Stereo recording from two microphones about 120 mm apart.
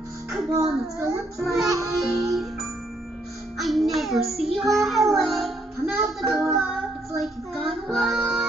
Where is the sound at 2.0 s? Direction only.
Centre (ahead or behind).